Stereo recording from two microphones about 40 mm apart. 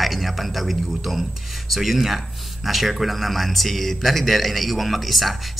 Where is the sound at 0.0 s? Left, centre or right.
Centre.